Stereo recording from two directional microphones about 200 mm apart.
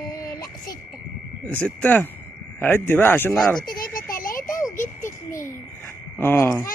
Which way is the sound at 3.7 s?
45° left (ahead or behind).